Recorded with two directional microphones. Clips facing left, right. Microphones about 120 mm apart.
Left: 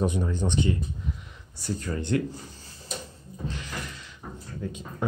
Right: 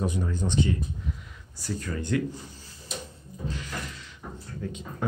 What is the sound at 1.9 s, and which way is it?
Speech, 30° left (ahead or behind).